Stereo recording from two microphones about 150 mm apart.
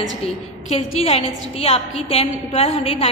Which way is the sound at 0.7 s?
40° left (ahead or behind).